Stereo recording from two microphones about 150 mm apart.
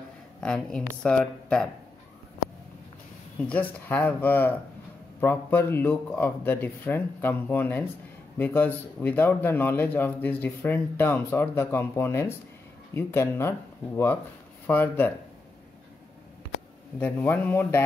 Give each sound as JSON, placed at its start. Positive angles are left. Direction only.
{"t": 0.4, "sound": "speech", "side_deg": 5}
{"t": 3.3, "sound": "speech", "side_deg": 10}
{"t": 17.0, "sound": "speech", "side_deg": 10}